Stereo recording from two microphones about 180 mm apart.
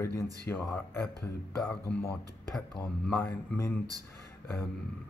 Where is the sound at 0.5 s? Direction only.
10° left (ahead or behind).